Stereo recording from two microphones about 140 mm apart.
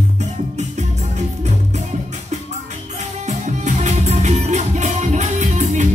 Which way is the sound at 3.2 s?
55° right (ahead or behind).